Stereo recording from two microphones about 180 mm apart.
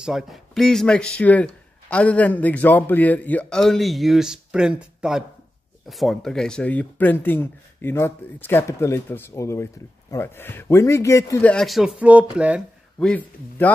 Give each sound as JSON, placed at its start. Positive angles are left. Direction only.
{"t": 0.0, "sound": "speech", "side_deg": 0}
{"t": 11.5, "sound": "speech", "side_deg": 0}
{"t": 13.0, "sound": "speech", "side_deg": 10}